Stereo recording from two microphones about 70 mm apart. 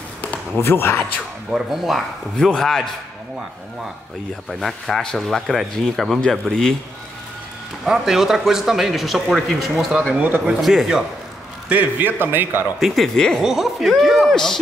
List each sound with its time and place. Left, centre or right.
0.6 s a man's voice: left
1.5 s speech: centre
4.5 s speech: centre
7.8 s speech: centre
9.8 s a man's voice: centre
10.6 s speech: centre
11.7 s a man's voice: right
12.7 s speech: centre
13.4 s speech: centre
14.3 s a man's voice: centre